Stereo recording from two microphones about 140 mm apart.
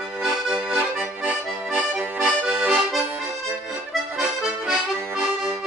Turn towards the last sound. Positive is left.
turn(degrees=-5)  # may be behind; listen again after turning